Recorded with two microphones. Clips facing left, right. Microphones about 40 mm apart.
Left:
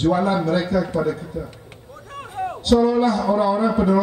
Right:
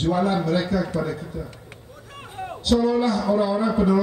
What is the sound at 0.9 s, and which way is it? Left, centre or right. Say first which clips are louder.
Speech: left 4 dB; centre.